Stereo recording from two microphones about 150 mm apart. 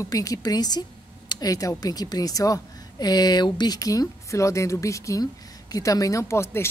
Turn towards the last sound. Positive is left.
turn(degrees=15)  # may be behind; listen again after turning